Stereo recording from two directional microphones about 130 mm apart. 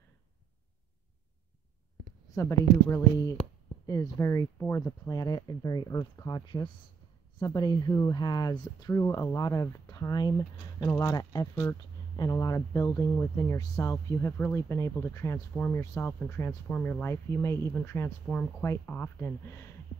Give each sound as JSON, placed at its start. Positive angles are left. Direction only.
{"t": 2.3, "sound": "speech", "side_deg": 25}
{"t": 4.6, "sound": "speech", "side_deg": 10}